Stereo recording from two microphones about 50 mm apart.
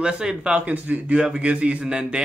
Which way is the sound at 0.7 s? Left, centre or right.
Right.